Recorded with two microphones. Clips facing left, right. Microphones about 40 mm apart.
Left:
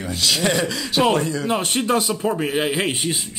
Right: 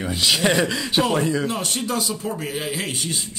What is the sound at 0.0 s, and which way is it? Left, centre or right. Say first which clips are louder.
A man's voice: right 1 dB; centre.